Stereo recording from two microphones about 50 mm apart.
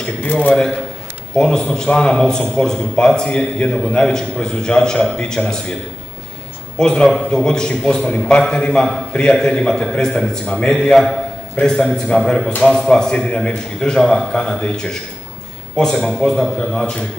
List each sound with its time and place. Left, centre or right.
0.2 s a man's voice: left
1.3 s a man's voice: centre
3.3 s a man's voice: left
6.8 s a man's voice: centre
7.1 s a man's voice: centre
9.1 s a man's voice: left